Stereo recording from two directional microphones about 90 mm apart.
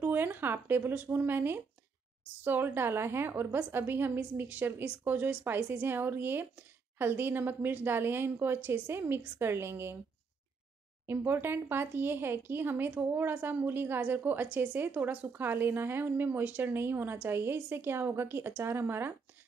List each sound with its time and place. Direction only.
0.0 s speech: 20° right (ahead or behind)
11.1 s speech: 25° right (ahead or behind)